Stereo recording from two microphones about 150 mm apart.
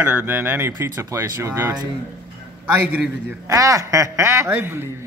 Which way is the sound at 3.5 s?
20° right (ahead or behind).